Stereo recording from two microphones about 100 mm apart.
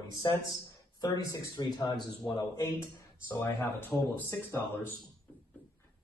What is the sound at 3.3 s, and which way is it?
Speech, 20° left (ahead or behind).